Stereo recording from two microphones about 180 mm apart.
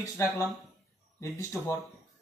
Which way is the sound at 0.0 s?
15° left (ahead or behind).